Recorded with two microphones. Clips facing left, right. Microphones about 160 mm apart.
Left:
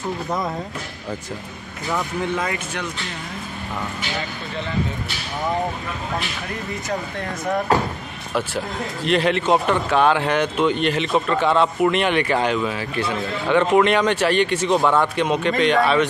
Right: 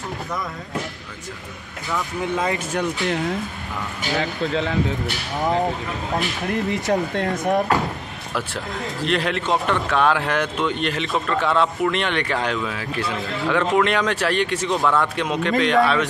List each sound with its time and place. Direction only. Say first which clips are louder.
2.3 s speech: right 5 dB; 20° right (ahead or behind)
2.7 s speech: right 7 dB; 45° right (ahead or behind)
8.4 s speech: left 3 dB; centre (ahead or behind)